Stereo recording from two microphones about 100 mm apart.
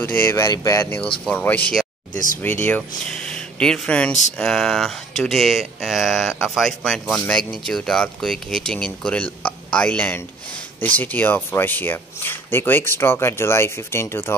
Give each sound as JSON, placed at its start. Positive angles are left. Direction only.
{"t": 0.0, "sound": "speech", "side_deg": 20}
{"t": 0.8, "sound": "speech", "side_deg": 15}